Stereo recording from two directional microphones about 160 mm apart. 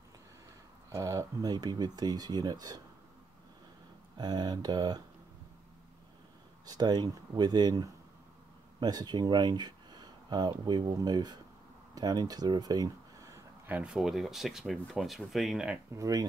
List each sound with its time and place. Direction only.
0.8 s speech: 20° right (ahead or behind)
4.2 s speech: 25° right (ahead or behind)
6.6 s speech: 25° right (ahead or behind); by 15.8 s 5° right (ahead or behind)
15.9 s speech: 20° right (ahead or behind)